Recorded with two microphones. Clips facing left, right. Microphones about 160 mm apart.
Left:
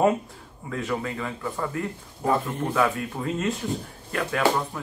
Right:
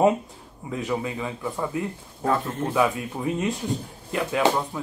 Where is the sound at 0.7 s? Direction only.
15° right (ahead or behind).